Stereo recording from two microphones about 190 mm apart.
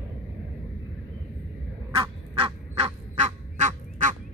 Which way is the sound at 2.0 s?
30° right (ahead or behind).